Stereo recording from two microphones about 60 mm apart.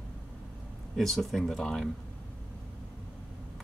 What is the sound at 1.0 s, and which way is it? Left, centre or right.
Speech, centre.